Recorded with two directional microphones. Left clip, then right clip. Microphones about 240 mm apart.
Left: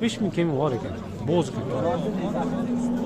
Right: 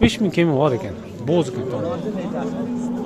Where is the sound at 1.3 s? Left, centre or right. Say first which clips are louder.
Right 5 dB; centre.